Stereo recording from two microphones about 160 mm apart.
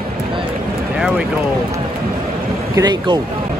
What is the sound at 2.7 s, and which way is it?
Speech, 25° right (ahead or behind).